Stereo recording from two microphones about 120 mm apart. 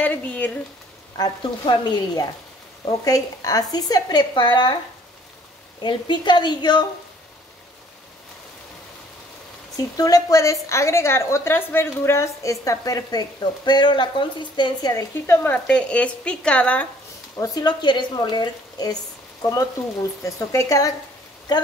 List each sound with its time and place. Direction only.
0.0 s speech: 15° left (ahead or behind)
1.1 s speech: 35° left (ahead or behind)
5.8 s speech: 40° left (ahead or behind)
9.8 s a woman's voice: 30° left (ahead or behind); by 16.8 s 10° left (ahead or behind)
17.4 s a woman's voice: 35° left (ahead or behind)